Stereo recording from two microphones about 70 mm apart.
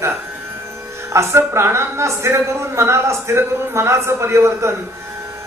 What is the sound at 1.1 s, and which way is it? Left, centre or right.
A man's voice, right.